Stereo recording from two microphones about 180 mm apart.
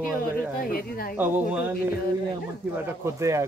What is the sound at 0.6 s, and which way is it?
Speech, 55° left (ahead or behind).